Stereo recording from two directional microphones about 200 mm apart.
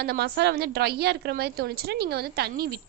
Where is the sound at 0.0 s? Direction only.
55° right (ahead or behind).